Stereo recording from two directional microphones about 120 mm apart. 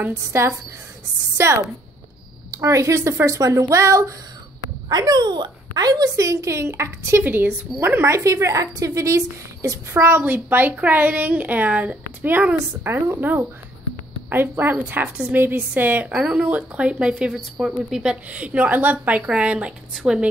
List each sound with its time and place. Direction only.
0.0 s speech: 20° right (ahead or behind); by 20.2 s 5° right (ahead or behind)